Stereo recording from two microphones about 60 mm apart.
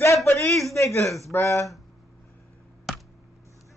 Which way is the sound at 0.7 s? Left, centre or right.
Left.